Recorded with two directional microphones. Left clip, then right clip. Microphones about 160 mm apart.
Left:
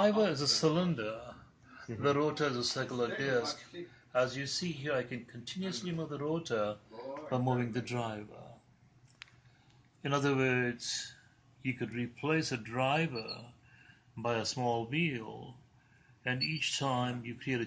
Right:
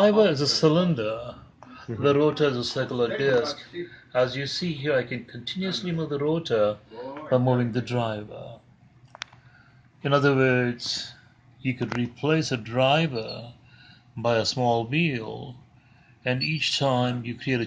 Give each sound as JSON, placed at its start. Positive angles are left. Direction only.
{"t": 0.0, "sound": "a man's voice", "side_deg": -50}
{"t": 2.0, "sound": "a man's voice", "side_deg": -30}
{"t": 10.0, "sound": "a man's voice", "side_deg": -50}
{"t": 14.1, "sound": "speech", "side_deg": -40}
{"t": 16.4, "sound": "a man's voice", "side_deg": -40}